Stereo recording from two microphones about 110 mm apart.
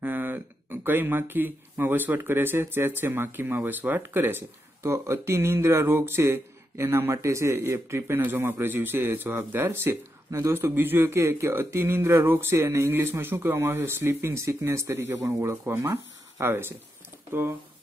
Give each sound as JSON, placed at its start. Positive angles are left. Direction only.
{"t": 0.0, "sound": "speech", "side_deg": -15}